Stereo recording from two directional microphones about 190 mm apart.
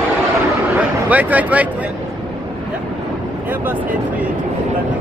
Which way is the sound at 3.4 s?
10° right (ahead or behind).